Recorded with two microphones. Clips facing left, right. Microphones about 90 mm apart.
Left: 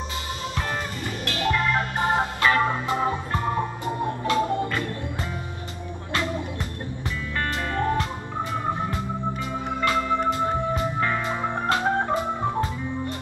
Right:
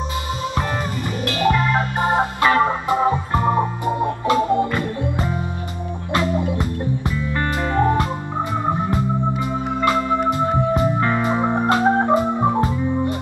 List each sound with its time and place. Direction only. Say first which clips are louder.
1.2 s organ: right 5 dB; 10° right (ahead or behind)
6.1 s music: right 7 dB; 20° right (ahead or behind)
9.4 s music: right 5 dB; 15° right (ahead or behind)
12.1 s organ: right 7 dB; 20° right (ahead or behind)